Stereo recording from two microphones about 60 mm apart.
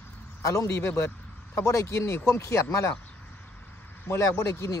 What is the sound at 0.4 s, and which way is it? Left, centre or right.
A man's voice, left.